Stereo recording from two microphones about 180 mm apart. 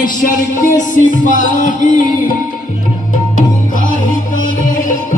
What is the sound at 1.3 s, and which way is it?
Music, 45° left (ahead or behind).